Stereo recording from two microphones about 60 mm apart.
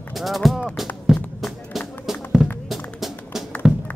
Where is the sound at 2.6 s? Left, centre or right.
Centre.